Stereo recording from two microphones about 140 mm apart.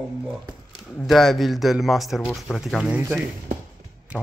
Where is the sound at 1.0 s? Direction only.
Centre (ahead or behind).